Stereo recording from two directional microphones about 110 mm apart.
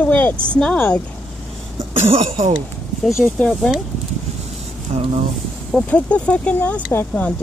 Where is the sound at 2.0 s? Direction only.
65° right (ahead or behind).